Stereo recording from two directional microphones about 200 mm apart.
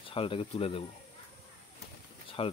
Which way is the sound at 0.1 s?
25° left (ahead or behind).